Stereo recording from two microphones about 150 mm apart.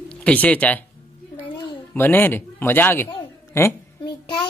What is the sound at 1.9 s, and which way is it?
Speech, 15° left (ahead or behind).